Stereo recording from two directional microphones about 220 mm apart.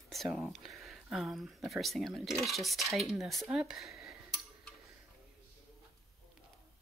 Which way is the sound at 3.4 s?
5° right (ahead or behind).